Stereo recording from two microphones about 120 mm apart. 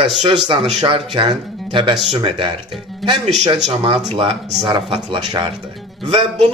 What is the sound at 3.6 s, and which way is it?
Speech, 60° right (ahead or behind).